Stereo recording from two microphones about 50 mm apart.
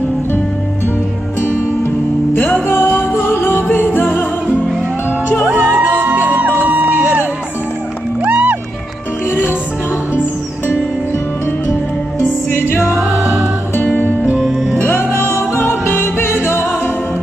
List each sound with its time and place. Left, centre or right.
2.3 s music: left
3.6 s music: left
5.5 s music: right
8.3 s music: right
9.3 s music: left
12.4 s music: left
12.8 s music: centre
13.2 s music: right
13.8 s music: left
14.8 s music: left